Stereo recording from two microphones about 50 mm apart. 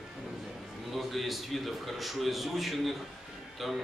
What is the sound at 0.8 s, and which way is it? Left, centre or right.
A man's voice, centre.